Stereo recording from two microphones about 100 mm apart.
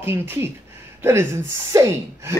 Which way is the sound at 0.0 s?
25° right (ahead or behind).